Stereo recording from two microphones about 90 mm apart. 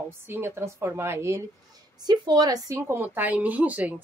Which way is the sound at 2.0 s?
50° right (ahead or behind).